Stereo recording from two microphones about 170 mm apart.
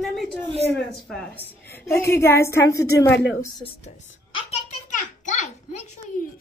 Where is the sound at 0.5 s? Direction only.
40° right (ahead or behind).